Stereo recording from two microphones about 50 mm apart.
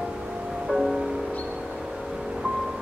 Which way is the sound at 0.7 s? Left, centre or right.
Centre.